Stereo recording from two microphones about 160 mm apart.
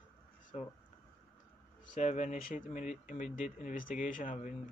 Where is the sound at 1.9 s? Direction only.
50° left (ahead or behind).